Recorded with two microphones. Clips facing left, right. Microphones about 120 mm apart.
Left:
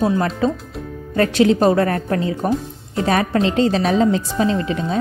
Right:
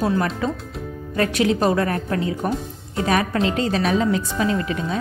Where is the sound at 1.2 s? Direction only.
35° left (ahead or behind).